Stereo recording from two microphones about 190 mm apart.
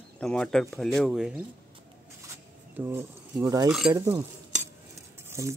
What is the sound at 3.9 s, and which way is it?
Cutlery, 15° right (ahead or behind).